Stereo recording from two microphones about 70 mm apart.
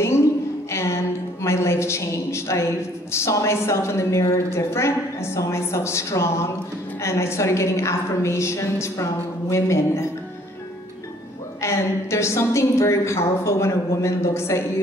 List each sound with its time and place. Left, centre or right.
0.7 s music: left
1.4 s a sound: left
3.1 s a woman's voice: left
11.6 s a woman's voice: left